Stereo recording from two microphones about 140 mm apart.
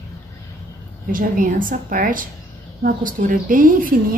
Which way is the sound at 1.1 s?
75° right (ahead or behind).